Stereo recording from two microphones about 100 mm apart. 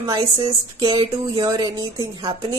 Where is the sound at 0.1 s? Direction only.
45° right (ahead or behind).